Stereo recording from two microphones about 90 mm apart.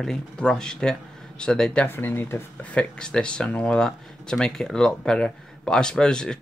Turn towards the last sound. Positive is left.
turn(degrees=10)  # may be behind; listen again after turning